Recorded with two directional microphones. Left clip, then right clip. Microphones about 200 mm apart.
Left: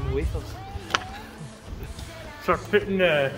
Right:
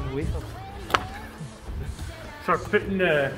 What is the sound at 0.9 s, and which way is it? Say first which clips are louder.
Music: right 2 dB; 20° right (ahead or behind).